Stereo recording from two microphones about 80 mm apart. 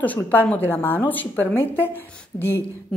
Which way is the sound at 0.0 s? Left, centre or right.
Left.